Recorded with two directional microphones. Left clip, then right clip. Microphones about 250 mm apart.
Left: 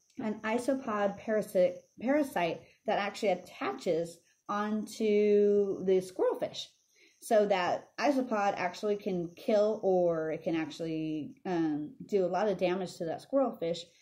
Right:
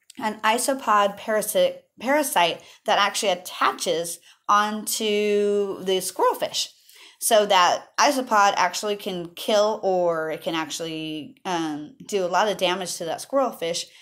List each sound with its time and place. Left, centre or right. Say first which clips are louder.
0.2 s a woman's voice: right 11 dB; centre
1.0 s speech: right 8 dB; right
2.0 s a woman's voice: right 9 dB; centre
2.4 s speech: right 10 dB; right
2.9 s a woman's voice: right 10 dB; centre
5.1 s speech: right 3 dB; right
5.5 s a woman's voice: right 5 dB; centre
8.9 s speech: right 5 dB; right
9.4 s a woman's voice: right 8 dB; centre
9.7 s speech: right 6 dB; right
10.5 s a woman's voice: right 7 dB; centre
10.9 s speech: right 4 dB; right
11.4 s a woman's voice: right 6 dB; centre